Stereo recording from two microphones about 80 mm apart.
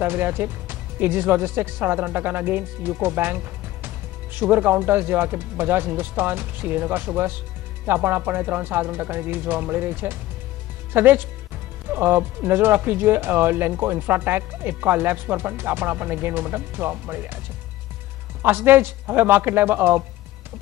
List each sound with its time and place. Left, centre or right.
0.0 s speech: right
18.4 s speech: right